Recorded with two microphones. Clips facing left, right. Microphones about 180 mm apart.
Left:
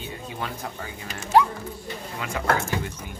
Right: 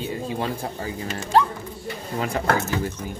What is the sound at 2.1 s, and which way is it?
Speech, 35° right (ahead or behind).